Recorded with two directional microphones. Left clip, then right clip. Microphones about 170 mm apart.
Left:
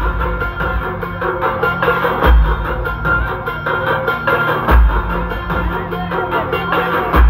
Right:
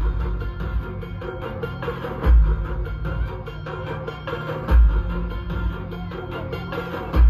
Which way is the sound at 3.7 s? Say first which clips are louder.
Left 16 dB; 10° right (ahead or behind).